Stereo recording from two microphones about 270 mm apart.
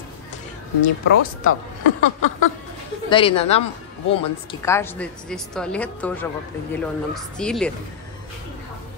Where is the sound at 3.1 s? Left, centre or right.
Left.